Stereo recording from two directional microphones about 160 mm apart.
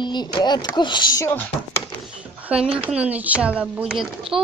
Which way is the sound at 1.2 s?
10° left (ahead or behind).